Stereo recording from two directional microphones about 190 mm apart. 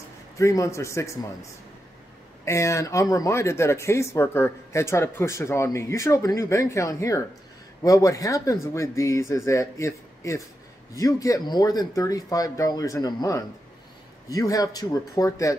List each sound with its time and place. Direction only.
0.4 s speech: 15° left (ahead or behind)